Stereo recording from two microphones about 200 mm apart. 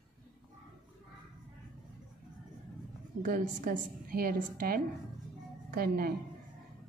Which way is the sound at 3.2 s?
45° right (ahead or behind).